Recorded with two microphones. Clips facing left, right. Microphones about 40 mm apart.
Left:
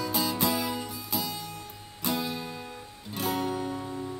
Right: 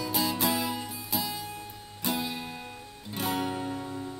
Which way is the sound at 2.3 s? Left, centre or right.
Right.